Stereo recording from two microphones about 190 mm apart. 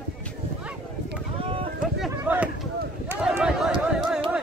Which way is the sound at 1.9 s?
5° right (ahead or behind).